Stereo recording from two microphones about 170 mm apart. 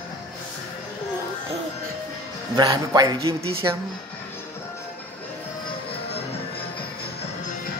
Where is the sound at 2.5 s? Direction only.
25° right (ahead or behind).